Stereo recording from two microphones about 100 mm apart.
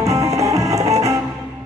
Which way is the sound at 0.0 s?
30° right (ahead or behind).